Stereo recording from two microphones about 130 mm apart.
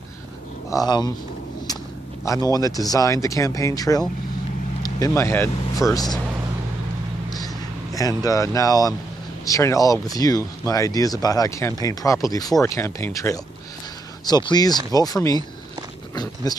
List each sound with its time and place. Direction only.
0.7 s speech: 30° left (ahead or behind)
2.2 s speech: 30° left (ahead or behind)
7.2 s a sound: 30° left (ahead or behind)
9.4 s speech: 25° left (ahead or behind)
16.5 s speech: 30° left (ahead or behind)